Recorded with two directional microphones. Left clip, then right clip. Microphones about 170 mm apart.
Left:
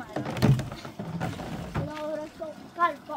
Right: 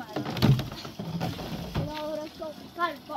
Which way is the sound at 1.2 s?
10° right (ahead or behind).